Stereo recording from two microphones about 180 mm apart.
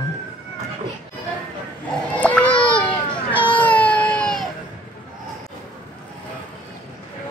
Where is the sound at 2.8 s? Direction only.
30° left (ahead or behind).